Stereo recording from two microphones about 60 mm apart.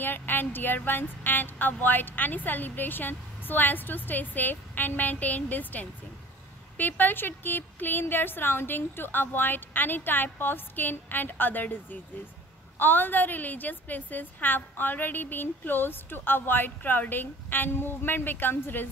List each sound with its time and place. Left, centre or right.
0.0 s a woman's voice: left